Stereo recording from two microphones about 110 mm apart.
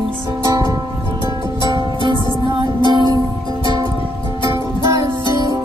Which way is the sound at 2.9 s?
40° right (ahead or behind).